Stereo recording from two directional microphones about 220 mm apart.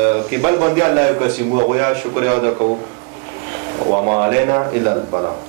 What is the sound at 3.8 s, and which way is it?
Speech, 25° right (ahead or behind).